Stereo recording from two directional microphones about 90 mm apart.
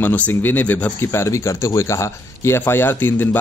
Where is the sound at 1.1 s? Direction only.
35° left (ahead or behind).